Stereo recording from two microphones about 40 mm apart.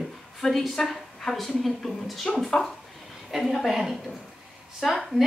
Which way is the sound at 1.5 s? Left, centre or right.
Centre.